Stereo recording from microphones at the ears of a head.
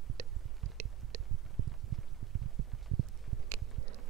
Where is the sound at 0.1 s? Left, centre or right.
Right.